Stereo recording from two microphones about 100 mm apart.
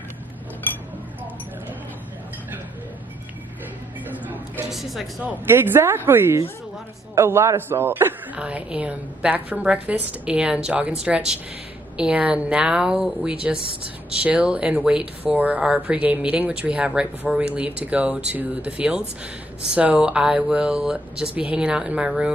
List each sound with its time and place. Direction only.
4.6 s speech: centre (ahead or behind)
5.2 s speech: 20° right (ahead or behind)
8.4 s speech: 10° right (ahead or behind)